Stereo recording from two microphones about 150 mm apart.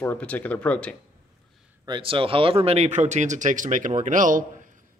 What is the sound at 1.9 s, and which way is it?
A man's voice, 35° right (ahead or behind).